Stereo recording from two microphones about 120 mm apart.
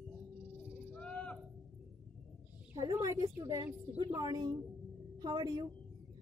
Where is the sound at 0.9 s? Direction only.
10° left (ahead or behind).